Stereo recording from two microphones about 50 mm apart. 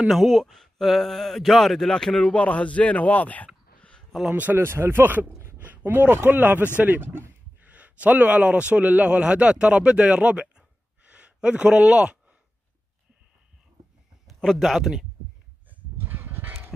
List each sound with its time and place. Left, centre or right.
0.1 s speech: centre
2.3 s speech: left
4.3 s speech: right
4.6 s speech: right
5.6 s a man's voice: right
11.1 s a sound: right
11.7 s a man's voice: centre
14.2 s speech: centre
16.0 s dog: right